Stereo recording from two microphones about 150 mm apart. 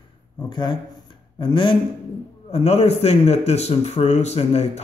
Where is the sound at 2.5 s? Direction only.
45° left (ahead or behind).